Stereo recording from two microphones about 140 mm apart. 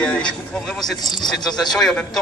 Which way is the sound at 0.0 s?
5° left (ahead or behind).